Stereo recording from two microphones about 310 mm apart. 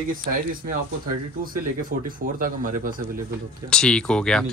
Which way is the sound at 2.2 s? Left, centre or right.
Right.